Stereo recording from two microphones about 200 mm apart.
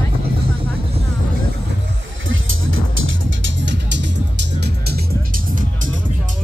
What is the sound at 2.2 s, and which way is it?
Music, 80° right.